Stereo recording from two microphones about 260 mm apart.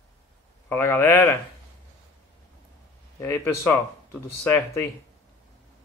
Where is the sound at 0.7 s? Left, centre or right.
Centre.